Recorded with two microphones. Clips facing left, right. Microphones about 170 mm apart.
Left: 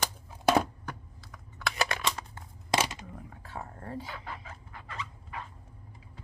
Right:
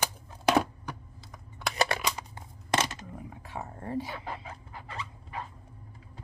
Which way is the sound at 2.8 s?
15° left (ahead or behind).